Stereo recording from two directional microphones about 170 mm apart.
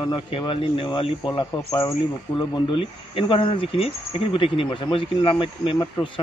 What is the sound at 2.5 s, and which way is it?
Speech, 30° left (ahead or behind).